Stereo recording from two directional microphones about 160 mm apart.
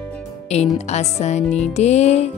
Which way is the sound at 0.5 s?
45° left (ahead or behind).